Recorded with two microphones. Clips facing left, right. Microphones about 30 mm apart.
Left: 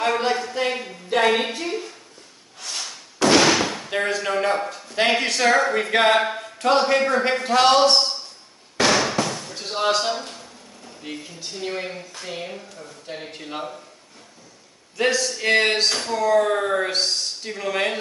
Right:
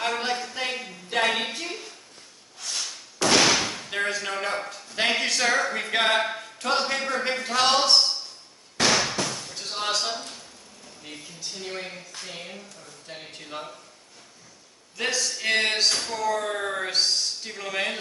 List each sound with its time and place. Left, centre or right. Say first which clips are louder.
0.0 s a sound: left 6 dB; centre
3.3 s speech: left 2 dB; centre
8.7 s basketball bounce: left 4 dB; centre
11.0 s speech: left 6 dB; centre
15.0 s speech: left 6 dB; centre